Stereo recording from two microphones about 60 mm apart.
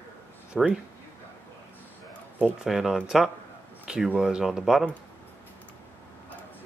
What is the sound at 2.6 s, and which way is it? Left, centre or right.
Speech, centre.